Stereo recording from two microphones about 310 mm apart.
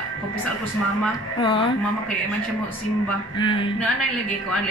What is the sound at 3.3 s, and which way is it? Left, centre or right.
Speech, centre.